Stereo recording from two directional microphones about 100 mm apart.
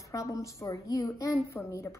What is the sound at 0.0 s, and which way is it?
A woman's voice, 30° left (ahead or behind).